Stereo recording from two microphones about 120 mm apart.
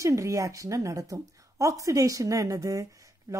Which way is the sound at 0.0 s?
25° right (ahead or behind).